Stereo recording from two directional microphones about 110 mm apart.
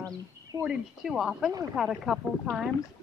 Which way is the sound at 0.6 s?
5° right (ahead or behind).